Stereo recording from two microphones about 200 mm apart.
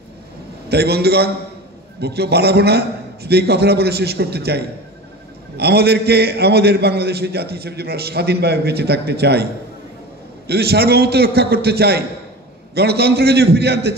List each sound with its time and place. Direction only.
0.7 s a man's voice: 55° right (ahead or behind)